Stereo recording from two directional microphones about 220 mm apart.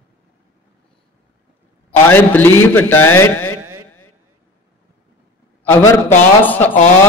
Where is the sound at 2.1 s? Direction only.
10° left (ahead or behind).